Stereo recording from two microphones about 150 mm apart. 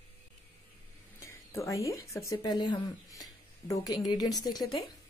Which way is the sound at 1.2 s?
20° left (ahead or behind).